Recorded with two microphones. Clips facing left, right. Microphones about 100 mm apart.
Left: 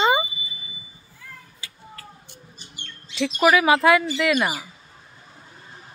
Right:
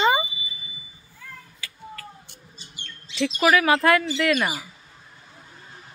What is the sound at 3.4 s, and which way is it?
Speech, 10° left (ahead or behind).